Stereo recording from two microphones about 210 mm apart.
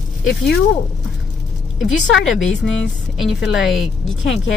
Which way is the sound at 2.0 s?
60° left (ahead or behind).